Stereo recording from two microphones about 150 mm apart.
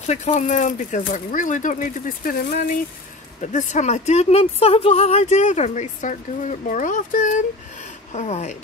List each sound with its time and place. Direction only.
0.0 s speech: 50° left (ahead or behind); by 2.8 s 70° left (ahead or behind)
3.3 s speech: 55° left (ahead or behind)
8.1 s speech: 50° left (ahead or behind)